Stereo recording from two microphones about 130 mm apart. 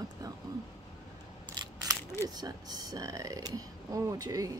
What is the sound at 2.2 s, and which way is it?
Speech, 30° right (ahead or behind).